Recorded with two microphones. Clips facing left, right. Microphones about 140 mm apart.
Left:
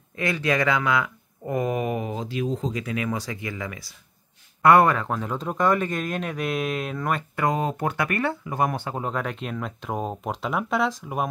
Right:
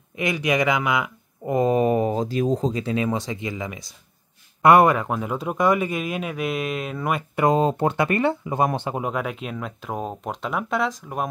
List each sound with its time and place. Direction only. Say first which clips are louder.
0.1 s speech: right 2 dB; 15° right (ahead or behind)
7.4 s speech: right 5 dB; 25° right (ahead or behind)
9.0 s speech: right 2 dB; 5° right (ahead or behind)